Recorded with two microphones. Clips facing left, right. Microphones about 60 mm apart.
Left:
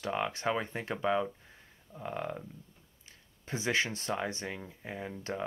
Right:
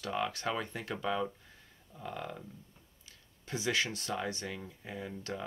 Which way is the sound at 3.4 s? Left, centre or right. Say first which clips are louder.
Left 2 dB; left.